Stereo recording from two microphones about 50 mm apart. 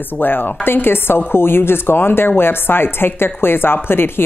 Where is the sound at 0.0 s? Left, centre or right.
Left.